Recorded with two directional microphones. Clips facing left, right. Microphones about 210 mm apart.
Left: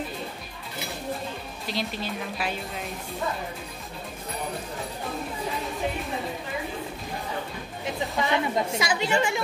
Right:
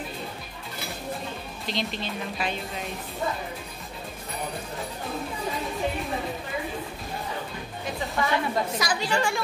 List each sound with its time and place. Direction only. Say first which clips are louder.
1.7 s speech: even; 10° left (ahead or behind)
8.2 s a woman's voice: even; 20° left (ahead or behind)